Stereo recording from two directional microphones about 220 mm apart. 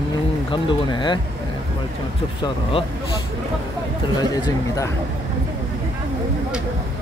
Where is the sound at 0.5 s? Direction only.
20° left (ahead or behind).